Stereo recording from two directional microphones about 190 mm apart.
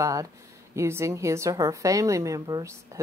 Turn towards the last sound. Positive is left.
turn(degrees=-15)  # may be behind; listen again after turning